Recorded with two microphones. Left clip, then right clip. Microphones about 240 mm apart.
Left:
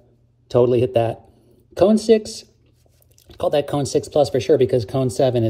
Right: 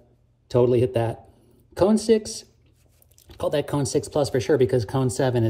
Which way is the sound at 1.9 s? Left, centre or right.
Centre.